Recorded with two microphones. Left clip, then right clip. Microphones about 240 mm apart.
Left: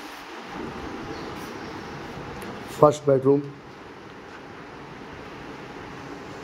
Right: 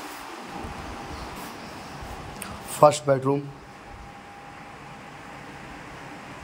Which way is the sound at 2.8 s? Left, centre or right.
Centre.